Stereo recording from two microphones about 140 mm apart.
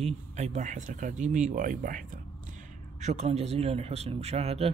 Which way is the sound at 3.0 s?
55° right (ahead or behind).